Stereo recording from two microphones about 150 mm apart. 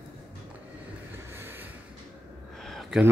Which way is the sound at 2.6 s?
Centre (ahead or behind).